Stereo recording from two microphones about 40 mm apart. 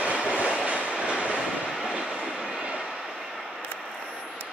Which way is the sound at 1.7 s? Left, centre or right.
Centre.